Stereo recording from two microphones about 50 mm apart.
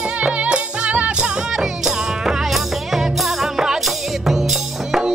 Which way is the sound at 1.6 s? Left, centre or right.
Centre.